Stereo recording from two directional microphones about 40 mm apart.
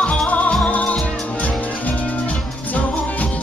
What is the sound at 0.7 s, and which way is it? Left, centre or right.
Music, left.